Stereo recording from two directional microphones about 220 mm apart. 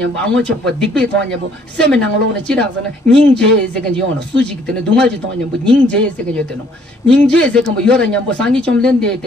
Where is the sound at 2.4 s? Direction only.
5° left (ahead or behind).